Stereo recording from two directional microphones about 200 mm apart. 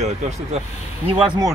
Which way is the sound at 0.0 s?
35° right (ahead or behind).